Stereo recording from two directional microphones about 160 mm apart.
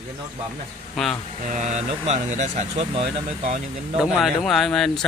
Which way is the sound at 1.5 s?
45° right (ahead or behind).